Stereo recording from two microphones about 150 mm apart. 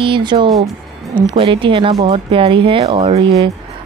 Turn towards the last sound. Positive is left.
turn(degrees=-35)  # may be behind; listen again after turning